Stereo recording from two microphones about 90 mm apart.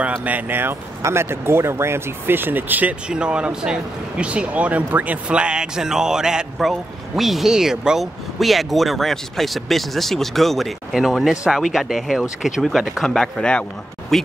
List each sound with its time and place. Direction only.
0.2 s speech: 20° right (ahead or behind); by 14.3 s 5° left (ahead or behind)